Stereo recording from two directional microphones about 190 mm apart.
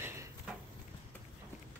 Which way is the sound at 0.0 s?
15° right (ahead or behind).